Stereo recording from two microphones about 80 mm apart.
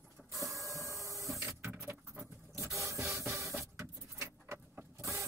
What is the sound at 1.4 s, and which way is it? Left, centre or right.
Vehicle, right.